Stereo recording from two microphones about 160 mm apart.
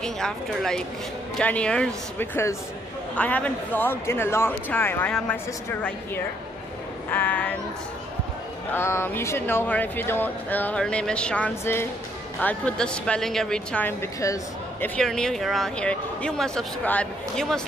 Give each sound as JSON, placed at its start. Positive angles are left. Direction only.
{"t": 0.0, "sound": "speech", "side_deg": 0}
{"t": 8.7, "sound": "speech", "side_deg": 15}
{"t": 14.2, "sound": "speech", "side_deg": 20}
{"t": 15.0, "sound": "speech", "side_deg": 5}